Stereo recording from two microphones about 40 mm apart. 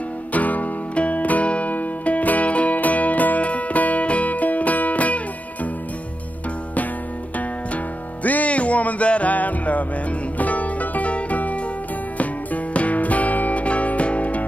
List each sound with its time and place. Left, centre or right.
0.3 s music: left
7.3 s music: left